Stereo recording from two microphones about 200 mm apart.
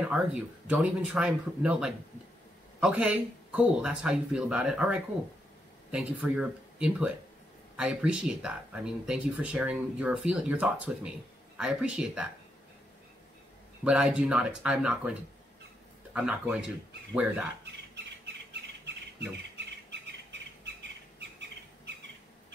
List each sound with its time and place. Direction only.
0.1 s speech: 5° right (ahead or behind)
13.8 s speech: 5° right (ahead or behind)
18.2 s bird: 55° right (ahead or behind)